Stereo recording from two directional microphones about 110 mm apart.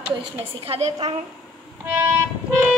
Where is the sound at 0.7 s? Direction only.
80° right.